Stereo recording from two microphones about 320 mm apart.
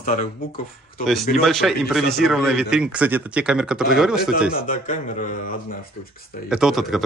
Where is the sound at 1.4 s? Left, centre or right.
Centre.